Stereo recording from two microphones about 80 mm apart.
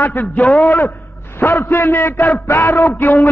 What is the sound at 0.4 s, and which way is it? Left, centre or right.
A man's voice, centre.